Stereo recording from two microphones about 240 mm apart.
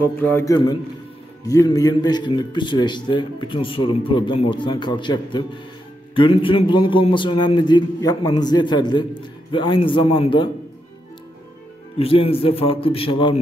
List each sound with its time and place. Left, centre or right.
0.0 s a man's voice: centre
12.0 s a man's voice: left